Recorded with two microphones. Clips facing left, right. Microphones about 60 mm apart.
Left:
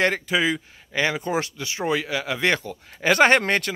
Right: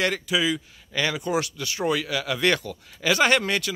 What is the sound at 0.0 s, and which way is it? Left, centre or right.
Speech, left.